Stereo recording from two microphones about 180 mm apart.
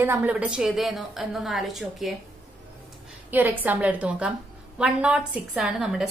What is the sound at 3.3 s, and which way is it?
A woman's voice, 10° right (ahead or behind).